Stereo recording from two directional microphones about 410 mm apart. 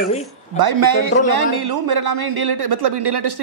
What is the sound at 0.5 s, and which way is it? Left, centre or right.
A man's voice, right.